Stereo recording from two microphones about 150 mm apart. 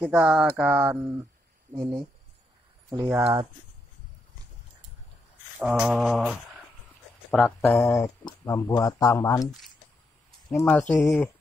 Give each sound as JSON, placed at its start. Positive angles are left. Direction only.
{"t": 0.0, "sound": "a sound", "side_deg": -5}
{"t": 1.8, "sound": "speech", "side_deg": -25}
{"t": 5.6, "sound": "mantra", "side_deg": -5}
{"t": 7.2, "sound": "speech", "side_deg": 0}
{"t": 7.8, "sound": "speech", "side_deg": 20}
{"t": 10.5, "sound": "speech", "side_deg": 15}